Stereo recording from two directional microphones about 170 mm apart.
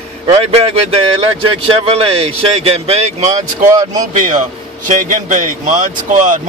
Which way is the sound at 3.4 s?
20° right (ahead or behind).